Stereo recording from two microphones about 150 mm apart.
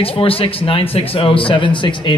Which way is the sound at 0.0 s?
40° left (ahead or behind).